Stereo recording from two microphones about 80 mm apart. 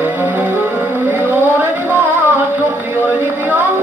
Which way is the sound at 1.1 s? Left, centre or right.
Right.